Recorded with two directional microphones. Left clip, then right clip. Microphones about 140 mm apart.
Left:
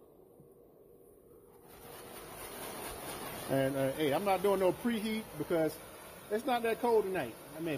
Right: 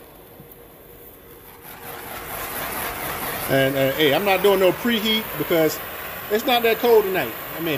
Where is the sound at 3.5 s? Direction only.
10° left (ahead or behind).